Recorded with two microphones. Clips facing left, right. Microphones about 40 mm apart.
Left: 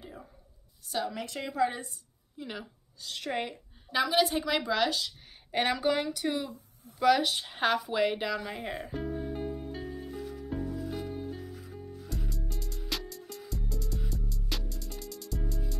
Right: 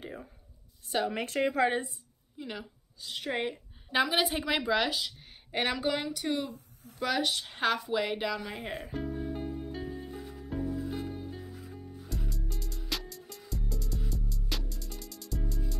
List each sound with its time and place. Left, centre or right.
0.9 s speech: right
2.3 s a woman's voice: centre
3.0 s a woman's voice: centre
3.3 s a woman's voice: right; by 7.3 s centre
7.3 s music: centre
10.8 s music: centre
11.1 s music: centre